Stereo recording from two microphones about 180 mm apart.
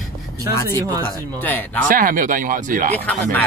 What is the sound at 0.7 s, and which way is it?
Speech, 20° right (ahead or behind).